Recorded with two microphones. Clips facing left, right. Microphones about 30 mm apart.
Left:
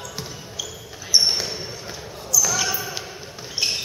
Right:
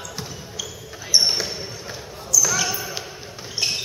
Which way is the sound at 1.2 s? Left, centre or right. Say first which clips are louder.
Even; centre.